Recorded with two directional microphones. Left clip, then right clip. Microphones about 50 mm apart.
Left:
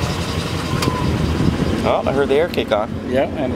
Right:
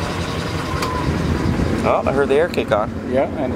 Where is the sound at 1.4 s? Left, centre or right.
Left.